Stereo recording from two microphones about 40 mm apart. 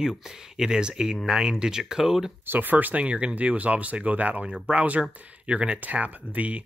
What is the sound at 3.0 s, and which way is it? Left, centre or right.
Speech, right.